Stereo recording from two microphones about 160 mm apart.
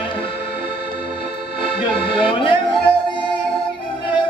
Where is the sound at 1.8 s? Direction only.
30° left (ahead or behind).